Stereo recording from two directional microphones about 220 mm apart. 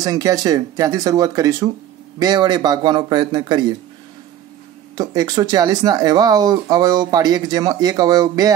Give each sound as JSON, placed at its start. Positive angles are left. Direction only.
{"t": 0.0, "sound": "a man's voice", "side_deg": -15}
{"t": 4.9, "sound": "speech", "side_deg": -15}